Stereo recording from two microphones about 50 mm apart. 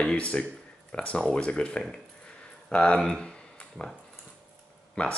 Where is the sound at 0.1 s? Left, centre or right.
Left.